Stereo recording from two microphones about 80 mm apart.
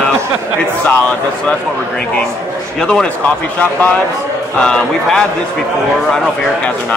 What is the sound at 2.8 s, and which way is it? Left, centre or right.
Speech, centre.